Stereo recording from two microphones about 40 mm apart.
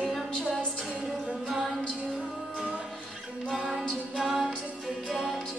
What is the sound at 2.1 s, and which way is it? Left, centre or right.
Music, right.